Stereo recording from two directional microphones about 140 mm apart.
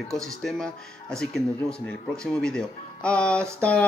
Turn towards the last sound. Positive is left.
turn(degrees=10)  # may be behind; listen again after turning